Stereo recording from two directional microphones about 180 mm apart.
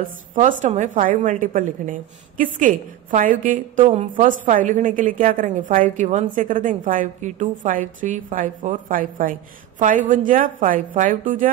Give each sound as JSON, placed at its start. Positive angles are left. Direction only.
{"t": 0.0, "sound": "a woman's voice", "side_deg": -45}